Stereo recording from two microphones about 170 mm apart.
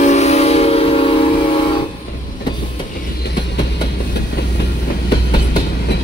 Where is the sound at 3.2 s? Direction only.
75° left (ahead or behind).